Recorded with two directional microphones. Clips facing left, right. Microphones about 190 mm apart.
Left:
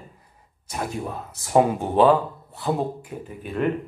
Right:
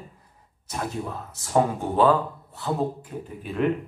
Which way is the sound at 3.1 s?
10° left (ahead or behind).